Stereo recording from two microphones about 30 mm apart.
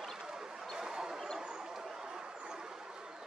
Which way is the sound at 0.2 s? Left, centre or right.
Right.